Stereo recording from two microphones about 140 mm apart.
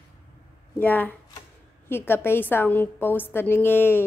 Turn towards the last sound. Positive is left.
turn(degrees=15)  # may be behind; listen again after turning